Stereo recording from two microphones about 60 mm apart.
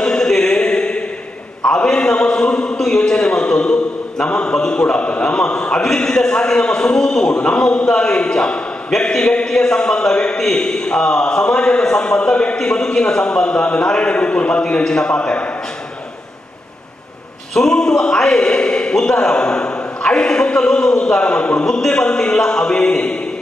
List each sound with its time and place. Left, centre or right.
0.0 s mantra: centre
1.6 s a sound: centre
4.2 s a man's voice: centre
17.6 s a man's voice: centre